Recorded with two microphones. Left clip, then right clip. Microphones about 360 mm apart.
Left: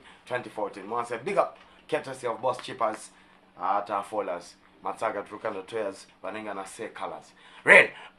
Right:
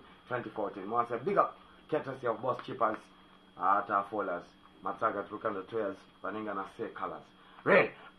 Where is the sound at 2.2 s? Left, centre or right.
Centre.